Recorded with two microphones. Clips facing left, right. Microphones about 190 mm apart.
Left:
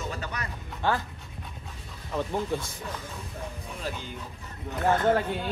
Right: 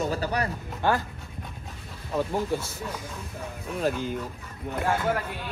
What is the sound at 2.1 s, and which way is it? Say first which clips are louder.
Speech: right 2 dB; 5° right (ahead or behind).